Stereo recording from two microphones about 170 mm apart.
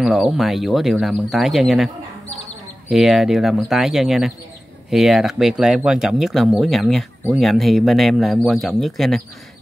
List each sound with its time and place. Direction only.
0.0 s speech: centre (ahead or behind)
2.9 s speech: centre (ahead or behind)